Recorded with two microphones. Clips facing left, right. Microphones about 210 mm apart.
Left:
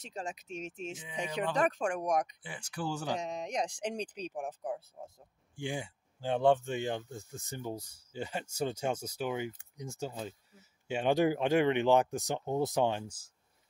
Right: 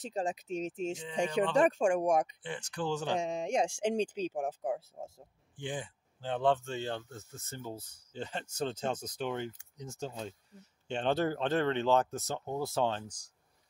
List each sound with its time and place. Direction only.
0.1 s speech: 30° right (ahead or behind)
2.4 s speech: 10° left (ahead or behind)
3.2 s speech: 30° right (ahead or behind)
5.6 s speech: 10° left (ahead or behind)